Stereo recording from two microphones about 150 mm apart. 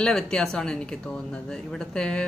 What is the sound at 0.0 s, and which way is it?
Speech, 5° left (ahead or behind).